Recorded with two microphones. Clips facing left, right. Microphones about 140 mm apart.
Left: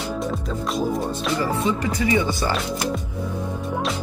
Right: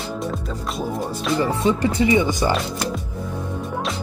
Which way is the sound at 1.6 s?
25° right (ahead or behind).